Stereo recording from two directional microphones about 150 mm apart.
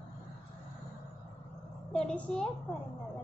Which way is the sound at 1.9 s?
5° left (ahead or behind).